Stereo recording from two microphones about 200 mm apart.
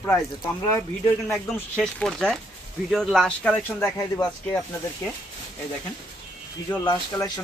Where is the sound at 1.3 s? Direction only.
5° left (ahead or behind).